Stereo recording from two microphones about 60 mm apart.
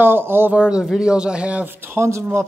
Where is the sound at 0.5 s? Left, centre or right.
Centre.